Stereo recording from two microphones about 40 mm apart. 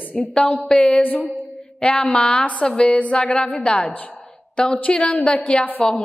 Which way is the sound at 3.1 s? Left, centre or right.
Left.